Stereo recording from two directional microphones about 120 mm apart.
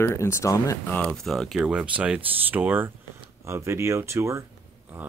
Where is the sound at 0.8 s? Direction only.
15° left (ahead or behind); by 4.4 s 25° right (ahead or behind).